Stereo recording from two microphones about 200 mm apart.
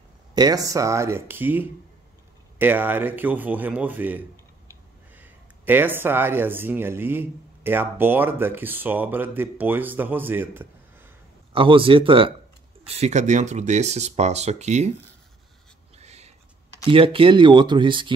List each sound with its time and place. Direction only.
0.3 s speech: 20° right (ahead or behind)
11.5 s speech: 25° right (ahead or behind)
16.0 s a sound: 35° right (ahead or behind)
16.9 s speech: 25° right (ahead or behind)